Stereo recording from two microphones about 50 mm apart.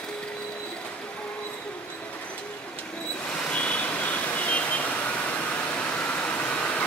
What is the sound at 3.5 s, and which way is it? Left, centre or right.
Vehicle, left.